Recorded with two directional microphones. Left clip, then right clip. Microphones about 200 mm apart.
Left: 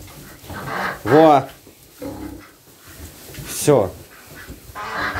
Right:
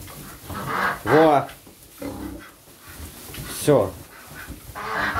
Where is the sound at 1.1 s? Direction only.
30° left (ahead or behind).